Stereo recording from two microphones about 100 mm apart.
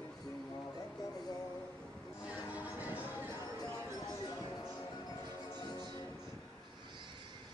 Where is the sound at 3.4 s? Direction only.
40° left (ahead or behind).